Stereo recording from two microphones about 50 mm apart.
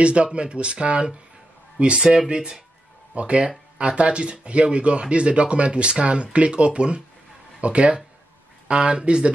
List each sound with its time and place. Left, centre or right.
0.0 s speech: right